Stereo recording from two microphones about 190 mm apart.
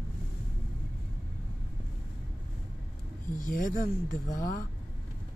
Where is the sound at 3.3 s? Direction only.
45° left (ahead or behind).